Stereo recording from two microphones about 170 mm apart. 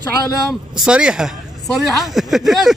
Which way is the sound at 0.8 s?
5° right (ahead or behind).